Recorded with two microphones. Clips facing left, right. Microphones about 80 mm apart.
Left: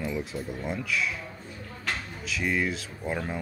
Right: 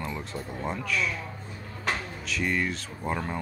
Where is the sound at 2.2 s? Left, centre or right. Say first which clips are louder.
Left 1 dB; centre.